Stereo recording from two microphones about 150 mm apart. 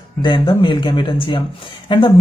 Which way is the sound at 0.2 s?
30° left (ahead or behind).